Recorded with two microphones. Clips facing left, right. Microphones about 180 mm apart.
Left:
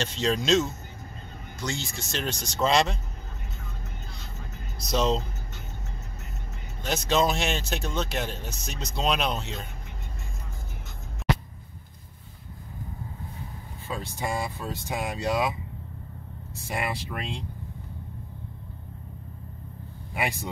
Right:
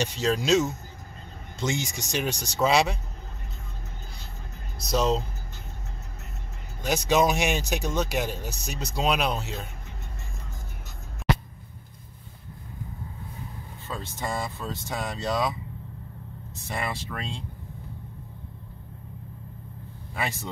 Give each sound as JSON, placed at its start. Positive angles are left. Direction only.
{"t": 0.0, "sound": "speech", "side_deg": -10}
{"t": 4.8, "sound": "speech", "side_deg": -5}
{"t": 6.8, "sound": "speech", "side_deg": -10}
{"t": 13.8, "sound": "speech", "side_deg": 10}
{"t": 16.5, "sound": "speech", "side_deg": 10}
{"t": 20.2, "sound": "speech", "side_deg": 15}